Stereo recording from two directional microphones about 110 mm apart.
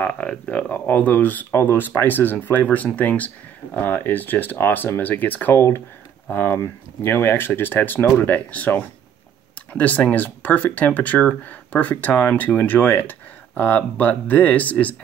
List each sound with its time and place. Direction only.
0.0 s speech: 10° left (ahead or behind)